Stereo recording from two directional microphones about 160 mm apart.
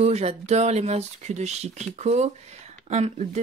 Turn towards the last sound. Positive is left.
turn(degrees=-45)  # may be behind; listen again after turning